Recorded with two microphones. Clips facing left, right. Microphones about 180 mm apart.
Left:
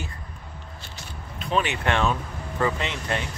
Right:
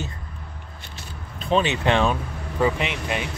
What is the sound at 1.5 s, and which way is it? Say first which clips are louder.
Speech: right 4 dB; 20° right (ahead or behind).